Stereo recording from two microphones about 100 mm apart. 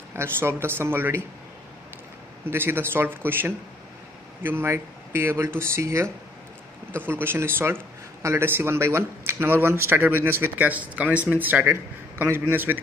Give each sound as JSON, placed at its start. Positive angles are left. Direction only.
{"t": 0.1, "sound": "speech", "side_deg": -25}
{"t": 2.4, "sound": "speech", "side_deg": -20}